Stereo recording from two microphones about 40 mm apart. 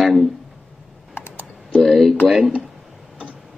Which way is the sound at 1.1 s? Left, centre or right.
Left.